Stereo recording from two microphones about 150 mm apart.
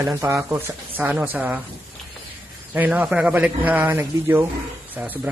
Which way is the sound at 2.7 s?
10° right (ahead or behind).